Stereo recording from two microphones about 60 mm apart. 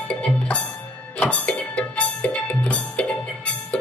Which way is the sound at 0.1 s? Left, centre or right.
Left.